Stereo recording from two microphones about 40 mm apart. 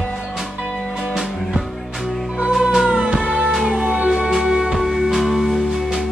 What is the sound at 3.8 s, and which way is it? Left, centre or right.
Music, right.